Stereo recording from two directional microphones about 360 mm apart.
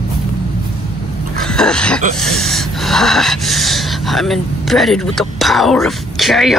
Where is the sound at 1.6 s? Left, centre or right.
Centre.